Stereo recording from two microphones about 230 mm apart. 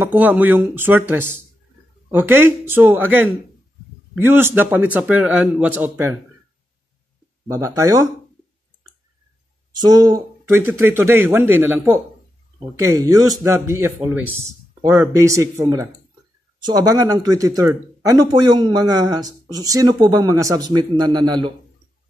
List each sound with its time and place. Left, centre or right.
0.1 s speech: centre
7.4 s speech: centre
9.8 s speech: centre